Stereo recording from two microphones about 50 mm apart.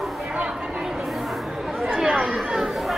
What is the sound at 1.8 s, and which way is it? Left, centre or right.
Chatter, centre.